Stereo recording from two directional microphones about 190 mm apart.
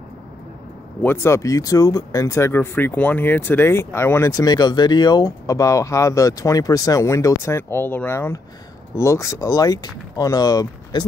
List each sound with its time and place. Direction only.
1.0 s speech: 15° left (ahead or behind)